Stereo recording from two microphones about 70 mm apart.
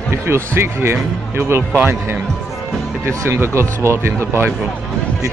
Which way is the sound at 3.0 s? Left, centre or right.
Right.